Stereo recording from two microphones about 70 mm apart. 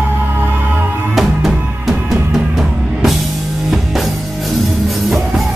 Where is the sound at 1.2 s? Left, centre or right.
Centre.